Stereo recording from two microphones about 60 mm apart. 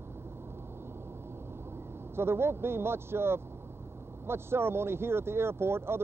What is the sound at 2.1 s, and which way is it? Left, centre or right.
Speech, right.